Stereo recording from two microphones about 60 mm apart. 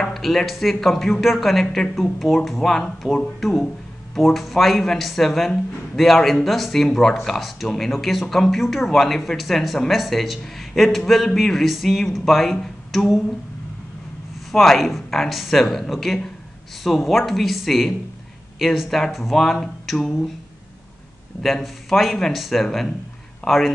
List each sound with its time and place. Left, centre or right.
0.1 s speech: centre
14.5 s speech: centre
21.4 s speech: centre